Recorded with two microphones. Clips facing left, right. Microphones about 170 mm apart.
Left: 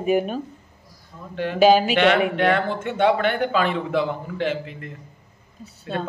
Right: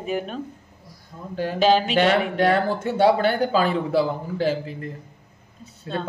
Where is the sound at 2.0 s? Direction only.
40° right (ahead or behind).